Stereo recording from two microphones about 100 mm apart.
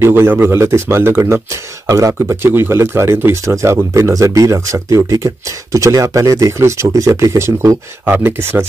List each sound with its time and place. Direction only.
0.0 s speech: 25° right (ahead or behind)
8.0 s speech: 20° right (ahead or behind)